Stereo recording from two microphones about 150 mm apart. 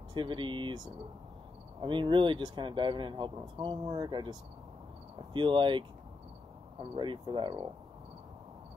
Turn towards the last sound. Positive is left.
turn(degrees=-30)  # may be behind; listen again after turning